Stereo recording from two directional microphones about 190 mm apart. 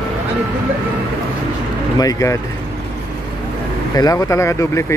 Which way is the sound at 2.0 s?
15° left (ahead or behind).